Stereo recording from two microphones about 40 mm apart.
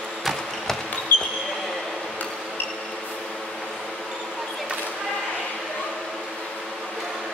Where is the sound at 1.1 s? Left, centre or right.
Left.